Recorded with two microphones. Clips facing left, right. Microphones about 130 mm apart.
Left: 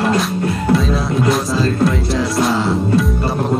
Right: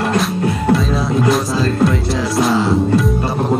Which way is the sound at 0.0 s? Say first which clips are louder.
Even; centre (ahead or behind).